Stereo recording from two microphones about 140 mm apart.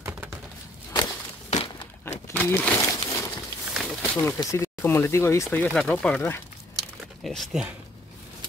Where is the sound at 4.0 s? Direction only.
20° left (ahead or behind).